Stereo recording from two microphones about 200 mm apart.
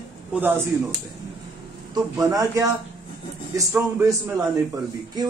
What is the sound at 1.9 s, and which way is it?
Speech, 15° right (ahead or behind).